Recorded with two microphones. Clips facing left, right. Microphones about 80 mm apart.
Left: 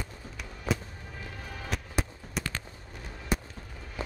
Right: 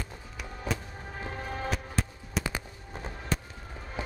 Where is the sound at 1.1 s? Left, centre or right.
Right.